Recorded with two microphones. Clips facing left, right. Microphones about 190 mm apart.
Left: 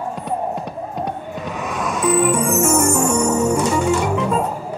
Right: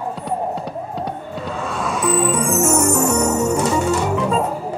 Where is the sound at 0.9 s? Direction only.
15° left (ahead or behind).